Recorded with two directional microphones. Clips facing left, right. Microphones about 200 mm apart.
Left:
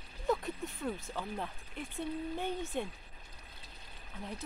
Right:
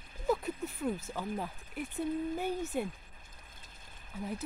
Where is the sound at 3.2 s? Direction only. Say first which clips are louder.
Left 2 dB; 50° right (ahead or behind).